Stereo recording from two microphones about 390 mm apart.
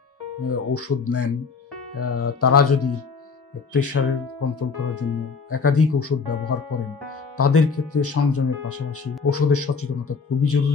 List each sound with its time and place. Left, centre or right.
0.4 s speech: left